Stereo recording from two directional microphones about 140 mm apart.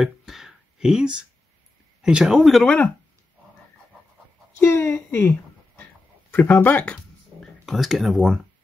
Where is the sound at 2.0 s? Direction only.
5° right (ahead or behind).